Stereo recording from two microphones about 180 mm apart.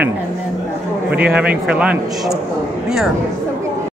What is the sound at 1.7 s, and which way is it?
Speech, 5° right (ahead or behind).